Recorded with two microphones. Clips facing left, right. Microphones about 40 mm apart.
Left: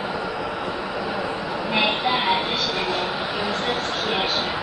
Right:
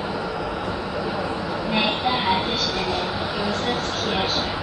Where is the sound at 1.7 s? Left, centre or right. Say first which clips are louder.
Left 1 dB; centre.